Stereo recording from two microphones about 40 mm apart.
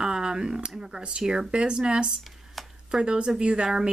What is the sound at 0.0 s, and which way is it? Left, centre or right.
Speech, centre.